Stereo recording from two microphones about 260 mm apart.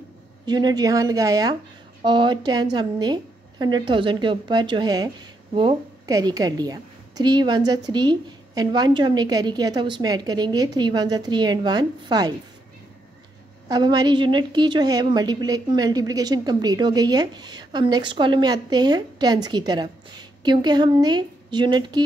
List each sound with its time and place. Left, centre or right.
0.5 s a woman's voice: centre
13.7 s a woman's voice: centre